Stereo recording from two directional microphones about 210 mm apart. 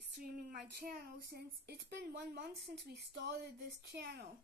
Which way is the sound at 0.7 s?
45° right (ahead or behind).